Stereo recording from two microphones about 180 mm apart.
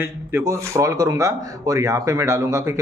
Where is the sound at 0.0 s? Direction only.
15° right (ahead or behind).